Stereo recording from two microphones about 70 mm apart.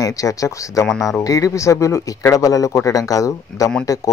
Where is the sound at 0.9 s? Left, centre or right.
Centre.